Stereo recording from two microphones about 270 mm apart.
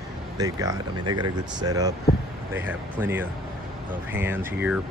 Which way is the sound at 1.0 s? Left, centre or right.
Right.